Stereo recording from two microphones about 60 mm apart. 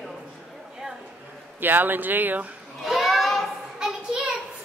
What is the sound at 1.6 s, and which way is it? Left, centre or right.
Speech, right.